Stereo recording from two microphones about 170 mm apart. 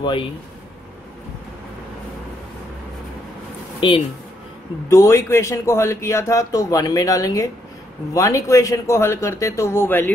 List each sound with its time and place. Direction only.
3.8 s a man's voice: 30° left (ahead or behind)
4.8 s a man's voice: 20° left (ahead or behind)